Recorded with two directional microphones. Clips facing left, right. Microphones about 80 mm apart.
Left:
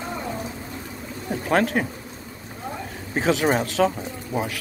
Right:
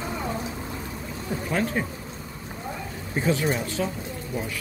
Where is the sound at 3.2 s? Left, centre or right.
Left.